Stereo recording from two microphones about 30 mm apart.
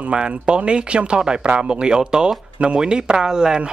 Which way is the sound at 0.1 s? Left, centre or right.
Right.